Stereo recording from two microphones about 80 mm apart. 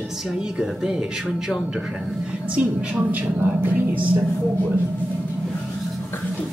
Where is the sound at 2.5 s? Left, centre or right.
Centre.